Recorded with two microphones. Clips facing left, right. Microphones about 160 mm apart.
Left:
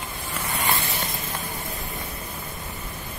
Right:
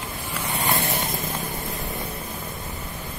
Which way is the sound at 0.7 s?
55° right (ahead or behind).